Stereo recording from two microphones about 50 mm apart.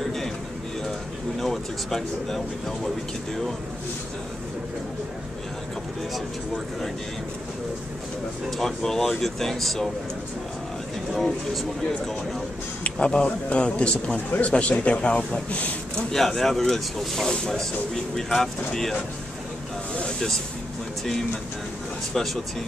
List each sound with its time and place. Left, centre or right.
1.4 s speech: centre
6.1 s speech: centre
8.5 s speech: centre
12.8 s speech: left
16.1 s speech: centre
20.1 s a sound: centre
22.1 s speech: centre